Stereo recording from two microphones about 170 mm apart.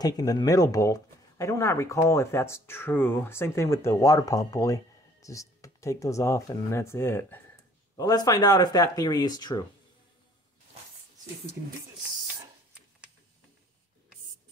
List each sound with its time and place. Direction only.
0.0 s speech: 20° left (ahead or behind)
7.9 s speech: 25° left (ahead or behind)